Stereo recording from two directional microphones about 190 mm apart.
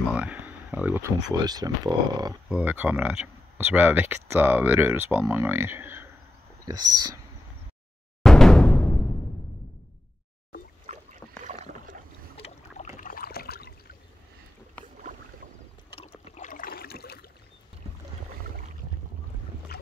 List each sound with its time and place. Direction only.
0.1 s speech: 5° right (ahead or behind)
1.3 s speech: 20° right (ahead or behind)
2.5 s speech: 10° right (ahead or behind)
6.7 s speech: 20° right (ahead or behind)
8.2 s music: 5° left (ahead or behind)
11.4 s rowboat: 40° right (ahead or behind)
12.4 s boat: 35° left (ahead or behind); by 13.7 s 55° left (ahead or behind)
15.9 s a sound: 30° left (ahead or behind); by 17.3 s 55° left (ahead or behind)
19.7 s dog: 55° left (ahead or behind)